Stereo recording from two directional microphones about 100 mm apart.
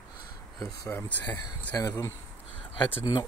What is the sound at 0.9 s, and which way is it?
Speech, 15° left (ahead or behind).